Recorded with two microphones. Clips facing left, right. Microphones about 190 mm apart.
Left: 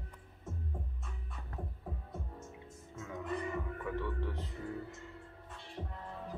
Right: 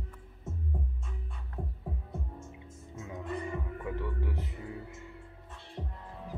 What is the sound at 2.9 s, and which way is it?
Music, 20° right (ahead or behind).